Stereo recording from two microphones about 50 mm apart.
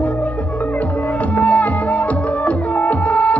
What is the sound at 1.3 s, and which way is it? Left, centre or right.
Music, left.